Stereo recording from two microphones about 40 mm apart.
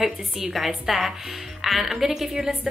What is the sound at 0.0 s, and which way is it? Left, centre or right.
A woman's voice, centre.